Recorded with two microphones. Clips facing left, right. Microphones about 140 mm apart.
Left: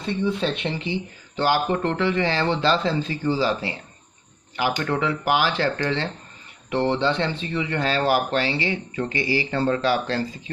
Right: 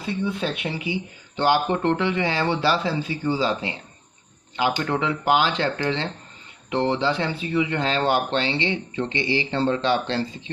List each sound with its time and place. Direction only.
0.0 s speech: centre (ahead or behind); by 10.5 s 25° right (ahead or behind)